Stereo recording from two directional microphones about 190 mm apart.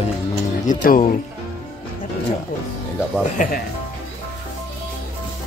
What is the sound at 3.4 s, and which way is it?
Speech, 45° left (ahead or behind).